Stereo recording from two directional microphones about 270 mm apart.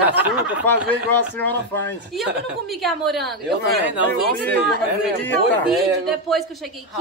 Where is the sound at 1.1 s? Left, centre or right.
Centre.